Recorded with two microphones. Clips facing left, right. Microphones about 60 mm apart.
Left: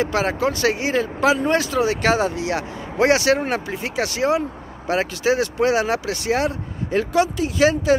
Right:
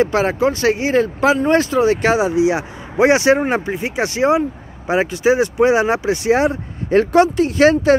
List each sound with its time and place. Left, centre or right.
0.0 s speech: right
2.1 s speech: centre
6.9 s speech: right